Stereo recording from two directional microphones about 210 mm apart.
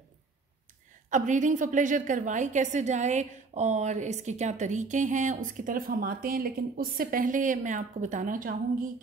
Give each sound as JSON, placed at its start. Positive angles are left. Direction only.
{"t": 1.1, "sound": "a woman's voice", "side_deg": -35}